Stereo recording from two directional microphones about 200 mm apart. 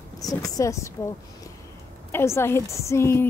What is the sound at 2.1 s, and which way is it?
A woman's voice, 10° left (ahead or behind).